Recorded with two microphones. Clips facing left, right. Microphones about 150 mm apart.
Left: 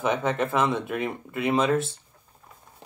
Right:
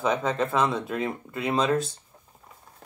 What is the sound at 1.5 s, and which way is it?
Speech, centre (ahead or behind).